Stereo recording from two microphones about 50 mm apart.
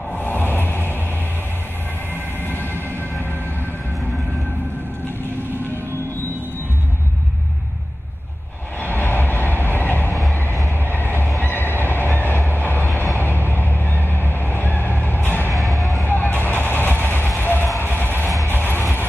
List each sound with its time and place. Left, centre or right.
0.1 s a sound: left
2.4 s train: left
8.8 s train: left
10.9 s honk: left
11.3 s neigh: left
12.1 s train: left
13.5 s vehicle: left
15.5 s music: centre
16.0 s music: left
16.4 s vehicle: left
17.4 s music: left